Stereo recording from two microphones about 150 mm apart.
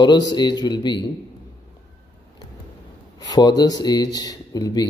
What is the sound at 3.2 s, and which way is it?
Speech, 25° left (ahead or behind).